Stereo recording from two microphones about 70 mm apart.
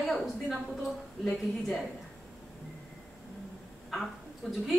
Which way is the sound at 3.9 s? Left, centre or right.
Centre.